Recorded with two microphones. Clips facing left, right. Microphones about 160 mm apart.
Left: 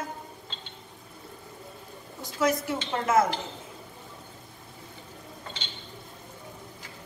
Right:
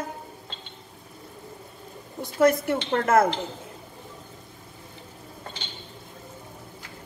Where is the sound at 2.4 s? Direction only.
55° right (ahead or behind).